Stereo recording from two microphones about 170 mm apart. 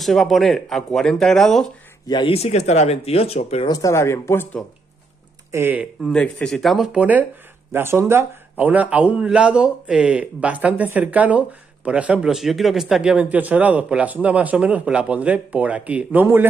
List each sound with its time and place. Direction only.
0.0 s speech: centre (ahead or behind)
2.0 s speech: 30° left (ahead or behind)
3.6 s speech: 20° left (ahead or behind)
5.5 s a man's voice: 15° right (ahead or behind)
6.0 s a man's voice: 5° left (ahead or behind); by 16.4 s 10° right (ahead or behind)